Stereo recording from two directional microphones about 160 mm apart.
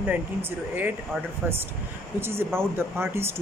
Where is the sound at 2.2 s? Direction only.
15° right (ahead or behind).